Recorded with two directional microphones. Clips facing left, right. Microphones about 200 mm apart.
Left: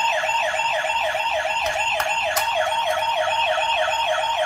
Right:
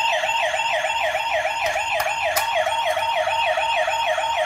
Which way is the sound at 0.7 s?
10° right (ahead or behind).